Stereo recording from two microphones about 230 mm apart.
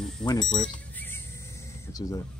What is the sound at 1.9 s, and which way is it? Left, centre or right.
Speech, centre.